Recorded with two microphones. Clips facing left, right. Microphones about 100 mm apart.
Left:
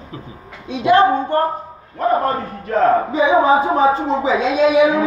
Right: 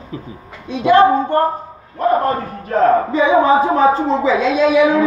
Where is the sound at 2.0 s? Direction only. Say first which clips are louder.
Right 2 dB; centre (ahead or behind).